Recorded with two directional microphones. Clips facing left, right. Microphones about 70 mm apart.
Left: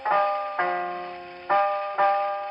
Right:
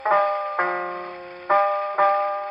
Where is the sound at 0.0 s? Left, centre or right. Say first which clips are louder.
Right 3 dB; right.